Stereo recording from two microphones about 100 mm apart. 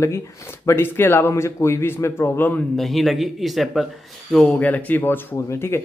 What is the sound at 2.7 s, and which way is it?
A man's voice, centre (ahead or behind).